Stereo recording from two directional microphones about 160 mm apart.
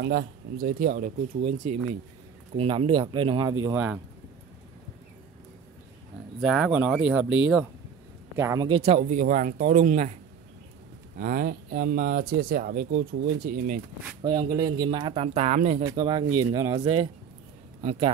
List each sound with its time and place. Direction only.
0.0 s speech: 65° right (ahead or behind)
1.4 s speech: 45° right (ahead or behind); by 3.7 s 25° right (ahead or behind)
3.7 s speech: 10° right (ahead or behind)
6.4 s speech: 5° right (ahead or behind)
8.4 s speech: 20° right (ahead or behind)
8.6 s speech: 40° right (ahead or behind)
11.1 s speech: 60° right (ahead or behind)
14.2 s speech: 25° right (ahead or behind); by 15.8 s 45° right (ahead or behind)
16.0 s speech: 30° right (ahead or behind)
17.8 s speech: 35° right (ahead or behind)